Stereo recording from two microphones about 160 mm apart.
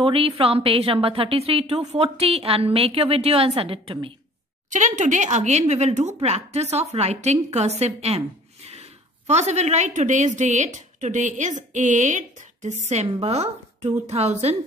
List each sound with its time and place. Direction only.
0.0 s a woman's voice: 35° right (ahead or behind)
4.6 s speech: 50° right (ahead or behind)
9.3 s a woman's voice: 45° right (ahead or behind)